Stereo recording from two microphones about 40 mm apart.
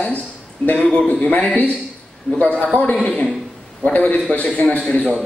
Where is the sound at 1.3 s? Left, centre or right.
Left.